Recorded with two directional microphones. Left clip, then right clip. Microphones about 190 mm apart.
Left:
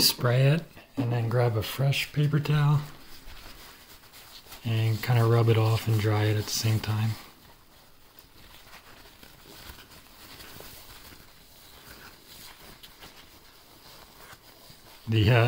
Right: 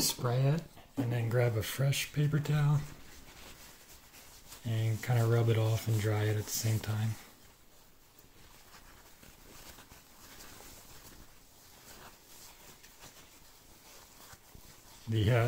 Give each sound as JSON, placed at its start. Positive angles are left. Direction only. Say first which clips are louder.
{"t": 0.0, "sound": "speech", "louder": "left 9 dB", "side_deg": 30}
{"t": 0.9, "sound": "speech", "louder": "left 5 dB", "side_deg": 0}
{"t": 4.6, "sound": "speech", "louder": "left 7 dB", "side_deg": 5}
{"t": 15.0, "sound": "speech", "louder": "left 7 dB", "side_deg": 15}